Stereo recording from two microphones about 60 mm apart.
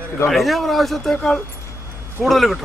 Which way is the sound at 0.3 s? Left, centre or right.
Centre.